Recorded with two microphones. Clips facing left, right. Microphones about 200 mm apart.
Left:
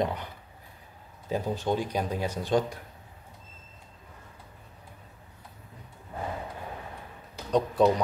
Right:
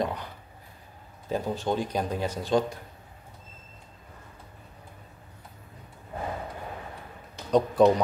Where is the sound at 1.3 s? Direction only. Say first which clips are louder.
Even; 10° left (ahead or behind).